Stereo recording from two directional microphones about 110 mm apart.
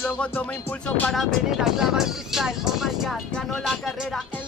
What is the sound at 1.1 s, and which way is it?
Speech, 5° right (ahead or behind).